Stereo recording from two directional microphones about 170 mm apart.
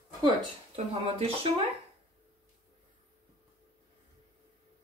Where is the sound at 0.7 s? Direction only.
35° right (ahead or behind).